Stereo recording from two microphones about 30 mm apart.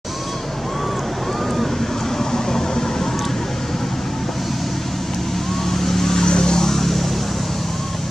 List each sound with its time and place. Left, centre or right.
2.3 s vehicle: centre
5.7 s vehicle: centre
6.2 s vehicle: left
6.7 s vehicle: centre